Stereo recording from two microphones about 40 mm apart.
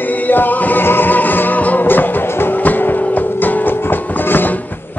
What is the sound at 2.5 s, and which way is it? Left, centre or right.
Music, left.